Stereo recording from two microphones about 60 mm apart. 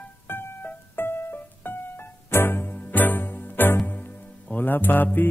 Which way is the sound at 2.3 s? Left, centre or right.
Left.